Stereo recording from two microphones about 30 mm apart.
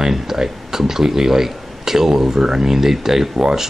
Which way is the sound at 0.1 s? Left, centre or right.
Centre.